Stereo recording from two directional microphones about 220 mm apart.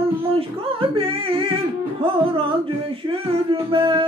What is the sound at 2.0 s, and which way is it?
Music, 25° right (ahead or behind).